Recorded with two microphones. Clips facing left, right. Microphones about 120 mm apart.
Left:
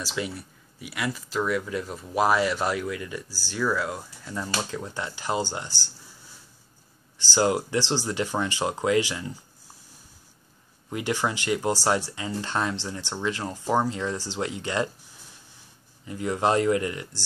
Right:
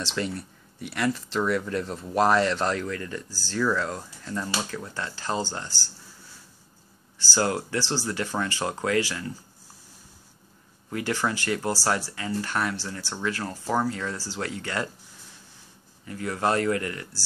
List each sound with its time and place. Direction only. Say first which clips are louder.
0.0 s speech: right 2 dB; 5° left (ahead or behind)
7.2 s speech: left 3 dB; 20° left (ahead or behind)
10.9 s speech: even; 20° left (ahead or behind)
16.1 s speech: left 2 dB; 20° left (ahead or behind)